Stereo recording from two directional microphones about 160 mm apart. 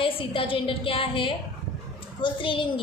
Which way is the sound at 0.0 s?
35° left (ahead or behind).